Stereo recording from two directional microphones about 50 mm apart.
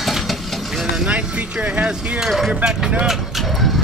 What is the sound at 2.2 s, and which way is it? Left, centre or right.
Music, centre.